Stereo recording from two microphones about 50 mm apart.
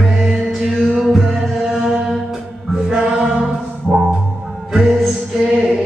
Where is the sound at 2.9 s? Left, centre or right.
Centre.